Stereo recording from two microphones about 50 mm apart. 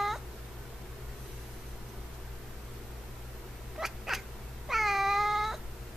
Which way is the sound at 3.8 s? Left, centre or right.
Centre.